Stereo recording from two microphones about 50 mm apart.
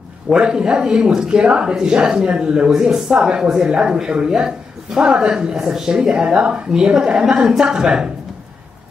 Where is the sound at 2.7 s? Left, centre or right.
Centre.